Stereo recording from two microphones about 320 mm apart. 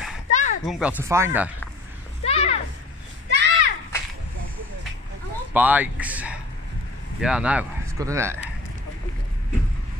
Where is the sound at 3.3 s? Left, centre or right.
Right.